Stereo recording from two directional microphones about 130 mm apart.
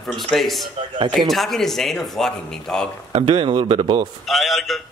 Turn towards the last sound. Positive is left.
turn(degrees=0)  # may be behind; listen again after turning